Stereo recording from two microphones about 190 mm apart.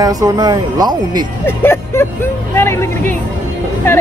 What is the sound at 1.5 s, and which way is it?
Speech, 10° left (ahead or behind).